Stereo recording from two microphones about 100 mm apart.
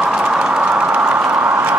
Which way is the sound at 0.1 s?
10° right (ahead or behind).